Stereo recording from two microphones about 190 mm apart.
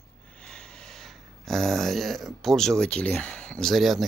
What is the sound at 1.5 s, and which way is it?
Speech, centre (ahead or behind).